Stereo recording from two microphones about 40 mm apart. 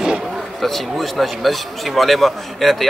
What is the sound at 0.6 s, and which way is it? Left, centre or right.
A man's voice, centre.